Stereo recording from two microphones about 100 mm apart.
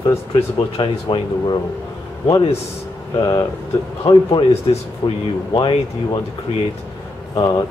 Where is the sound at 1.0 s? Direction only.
50° left (ahead or behind).